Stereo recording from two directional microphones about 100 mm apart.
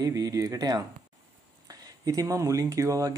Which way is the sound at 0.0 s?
35° right (ahead or behind).